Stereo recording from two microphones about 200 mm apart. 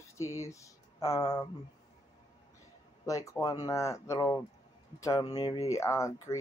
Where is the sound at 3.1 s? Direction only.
15° left (ahead or behind).